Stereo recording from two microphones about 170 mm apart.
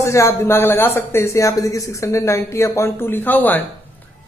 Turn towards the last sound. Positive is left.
turn(degrees=10)  # may be behind; listen again after turning